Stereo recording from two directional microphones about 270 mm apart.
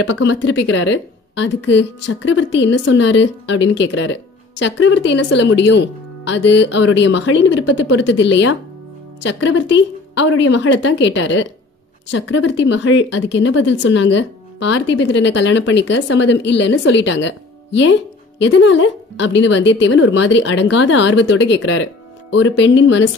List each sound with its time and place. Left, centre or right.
0.0 s a woman's voice: left